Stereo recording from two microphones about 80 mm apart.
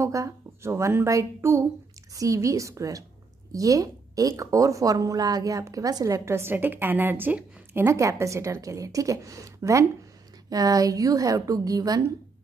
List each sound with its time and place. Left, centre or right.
0.0 s a woman's voice: right